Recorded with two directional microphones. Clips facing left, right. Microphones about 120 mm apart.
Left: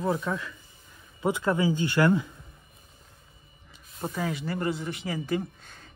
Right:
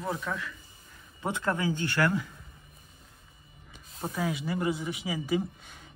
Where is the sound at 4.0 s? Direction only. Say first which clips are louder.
Left 1 dB; centre (ahead or behind).